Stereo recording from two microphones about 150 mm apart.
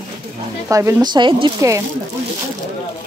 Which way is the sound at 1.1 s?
30° right (ahead or behind).